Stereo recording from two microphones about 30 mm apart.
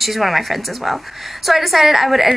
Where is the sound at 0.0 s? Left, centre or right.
Centre.